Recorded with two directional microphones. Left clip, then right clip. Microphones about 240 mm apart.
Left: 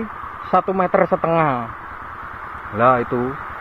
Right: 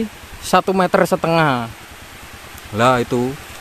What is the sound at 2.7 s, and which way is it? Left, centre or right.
Speech, right.